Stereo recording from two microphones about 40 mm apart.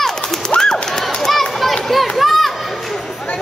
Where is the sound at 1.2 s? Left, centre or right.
Centre.